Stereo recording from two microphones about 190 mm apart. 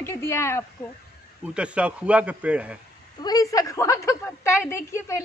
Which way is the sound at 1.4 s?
5° right (ahead or behind).